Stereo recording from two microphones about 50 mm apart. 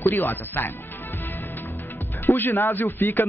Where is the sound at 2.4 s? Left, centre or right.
Left.